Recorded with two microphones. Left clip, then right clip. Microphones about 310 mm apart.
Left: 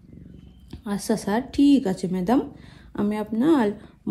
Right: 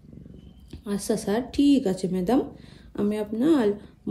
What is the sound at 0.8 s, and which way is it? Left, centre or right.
Speech, left.